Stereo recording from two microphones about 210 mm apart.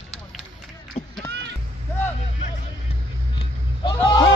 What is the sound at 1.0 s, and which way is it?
Run, 30° left (ahead or behind).